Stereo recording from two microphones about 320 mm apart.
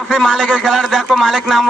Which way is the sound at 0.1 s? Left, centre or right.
Centre.